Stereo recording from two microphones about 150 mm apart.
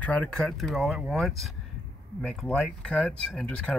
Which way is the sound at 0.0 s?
10° left (ahead or behind).